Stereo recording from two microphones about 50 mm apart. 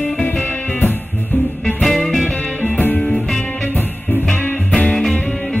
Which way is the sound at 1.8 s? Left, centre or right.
Centre.